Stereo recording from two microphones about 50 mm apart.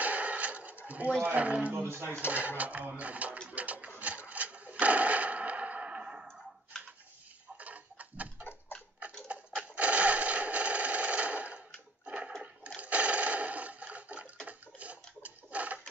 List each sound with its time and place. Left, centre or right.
0.0 s a sound: right
0.8 s speech: right
1.7 s speech: right
2.3 s speech: right
3.4 s sewing machine: right
4.0 s wood: right
6.7 s a sound: centre
7.5 s tick-tock: right
9.3 s sewing machine: right
12.8 s a sound: right